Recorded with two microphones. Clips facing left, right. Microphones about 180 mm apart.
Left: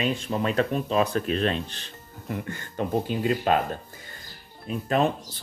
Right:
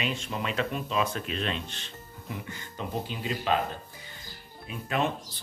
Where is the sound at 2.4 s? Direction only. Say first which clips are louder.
Left 7 dB; 55° left (ahead or behind).